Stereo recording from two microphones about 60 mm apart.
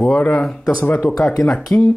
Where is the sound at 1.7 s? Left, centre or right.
Left.